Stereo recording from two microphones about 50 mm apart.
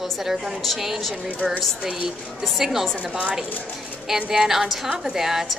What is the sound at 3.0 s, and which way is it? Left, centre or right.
Speech, right.